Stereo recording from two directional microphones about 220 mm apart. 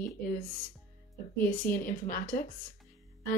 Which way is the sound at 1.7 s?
40° left (ahead or behind).